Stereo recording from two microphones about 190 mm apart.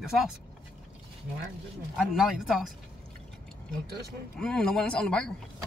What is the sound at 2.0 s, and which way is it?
Speech, centre (ahead or behind).